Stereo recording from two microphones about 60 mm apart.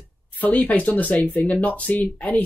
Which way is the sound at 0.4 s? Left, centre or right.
Left.